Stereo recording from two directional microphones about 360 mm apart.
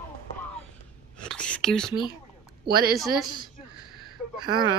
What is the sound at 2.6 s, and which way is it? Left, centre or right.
Speech, right.